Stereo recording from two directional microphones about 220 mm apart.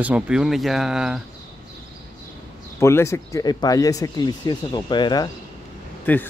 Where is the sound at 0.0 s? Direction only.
5° right (ahead or behind).